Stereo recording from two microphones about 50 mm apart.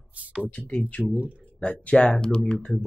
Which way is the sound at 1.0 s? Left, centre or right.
Right.